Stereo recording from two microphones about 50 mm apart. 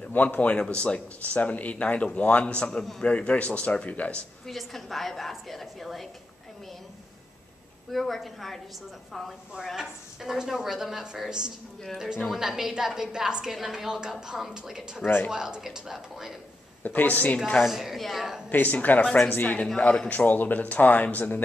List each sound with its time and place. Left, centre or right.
0.1 s speech: left
0.6 s speech: left
4.5 s a woman's voice: centre
7.9 s a woman's voice: centre
9.8 s a woman's voice: centre
16.8 s speech: left
17.6 s a woman's voice: centre
18.5 s speech: left